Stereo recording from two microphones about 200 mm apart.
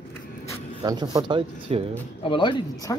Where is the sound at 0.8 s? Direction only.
20° right (ahead or behind).